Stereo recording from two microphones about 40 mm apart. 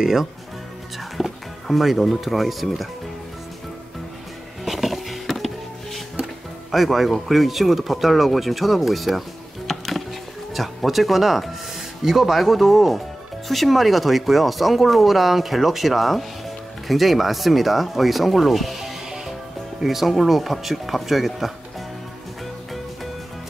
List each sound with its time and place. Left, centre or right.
0.0 s speech: centre
4.6 s music: centre
6.7 s speech: centre
9.7 s music: centre
10.5 s speech: centre